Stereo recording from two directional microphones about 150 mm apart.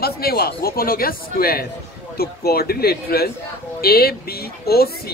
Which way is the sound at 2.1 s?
90° left.